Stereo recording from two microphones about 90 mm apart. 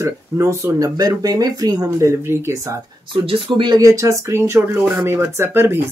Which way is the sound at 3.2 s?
75° right (ahead or behind).